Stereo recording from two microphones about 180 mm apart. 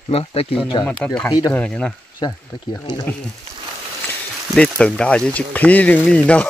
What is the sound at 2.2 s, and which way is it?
Speech, 20° left (ahead or behind).